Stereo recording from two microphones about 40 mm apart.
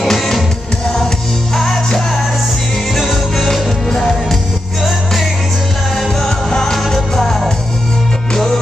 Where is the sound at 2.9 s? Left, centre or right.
Centre.